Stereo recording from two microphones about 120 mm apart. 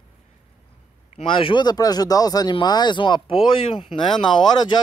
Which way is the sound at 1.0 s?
50° left (ahead or behind).